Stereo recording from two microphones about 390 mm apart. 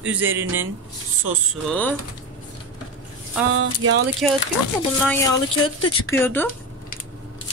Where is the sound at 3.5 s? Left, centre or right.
Right.